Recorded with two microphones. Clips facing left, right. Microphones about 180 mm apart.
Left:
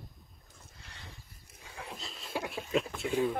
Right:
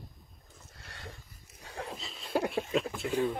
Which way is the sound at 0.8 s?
55° right (ahead or behind).